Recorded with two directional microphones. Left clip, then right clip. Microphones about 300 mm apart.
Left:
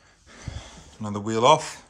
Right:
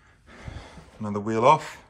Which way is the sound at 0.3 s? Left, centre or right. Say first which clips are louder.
Left 1 dB; centre.